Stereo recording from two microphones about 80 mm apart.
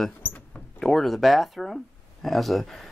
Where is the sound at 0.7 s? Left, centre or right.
Centre.